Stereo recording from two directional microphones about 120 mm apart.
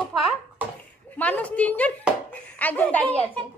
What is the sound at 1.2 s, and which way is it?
A child's voice, 10° left (ahead or behind).